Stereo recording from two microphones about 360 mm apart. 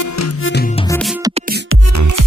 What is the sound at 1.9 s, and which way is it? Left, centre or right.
Music, right.